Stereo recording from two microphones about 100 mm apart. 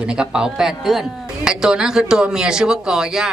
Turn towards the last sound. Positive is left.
turn(degrees=-5)  # may be behind; listen again after turning